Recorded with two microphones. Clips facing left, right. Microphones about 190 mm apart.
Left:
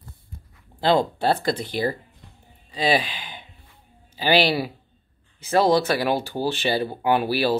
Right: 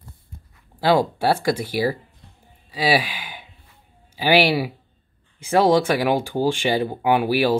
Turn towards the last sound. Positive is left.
turn(degrees=-15)  # may be behind; listen again after turning